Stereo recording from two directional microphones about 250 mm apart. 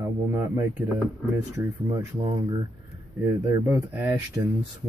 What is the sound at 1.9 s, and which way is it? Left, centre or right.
Speech, centre.